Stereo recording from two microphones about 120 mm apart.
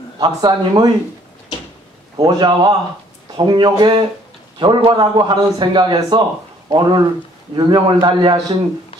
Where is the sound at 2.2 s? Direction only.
35° right (ahead or behind).